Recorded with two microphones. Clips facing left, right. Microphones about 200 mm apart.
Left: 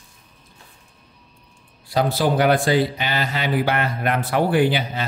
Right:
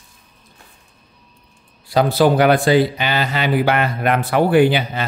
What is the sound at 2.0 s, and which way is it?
Speech, 75° right (ahead or behind).